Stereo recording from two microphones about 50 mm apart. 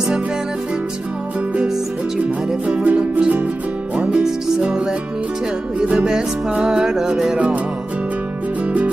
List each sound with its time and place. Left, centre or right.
2.7 s music: right
4.1 s music: centre